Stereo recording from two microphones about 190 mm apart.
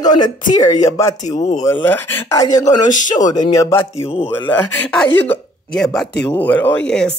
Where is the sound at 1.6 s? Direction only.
10° left (ahead or behind).